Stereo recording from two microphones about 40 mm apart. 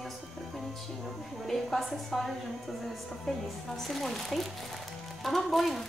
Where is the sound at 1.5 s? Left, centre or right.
Centre.